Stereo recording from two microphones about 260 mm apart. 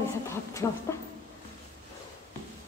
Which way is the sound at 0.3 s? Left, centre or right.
Centre.